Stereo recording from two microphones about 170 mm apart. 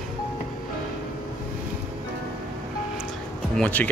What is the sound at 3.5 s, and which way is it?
Speech, 10° left (ahead or behind).